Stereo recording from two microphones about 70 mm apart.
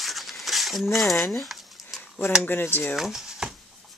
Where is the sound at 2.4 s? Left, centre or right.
Left.